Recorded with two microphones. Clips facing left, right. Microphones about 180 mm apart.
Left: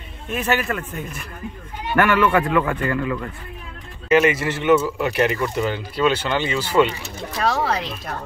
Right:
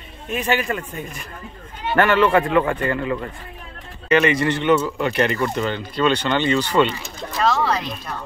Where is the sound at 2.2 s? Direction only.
30° right (ahead or behind).